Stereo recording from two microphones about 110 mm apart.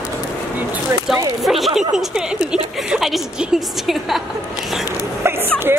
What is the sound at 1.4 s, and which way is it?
A woman's voice, centre (ahead or behind).